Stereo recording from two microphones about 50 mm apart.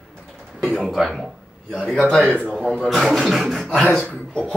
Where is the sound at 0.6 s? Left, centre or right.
Centre.